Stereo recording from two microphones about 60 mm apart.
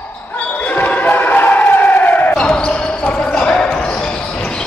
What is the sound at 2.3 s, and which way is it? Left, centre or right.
Basketball bounce, centre.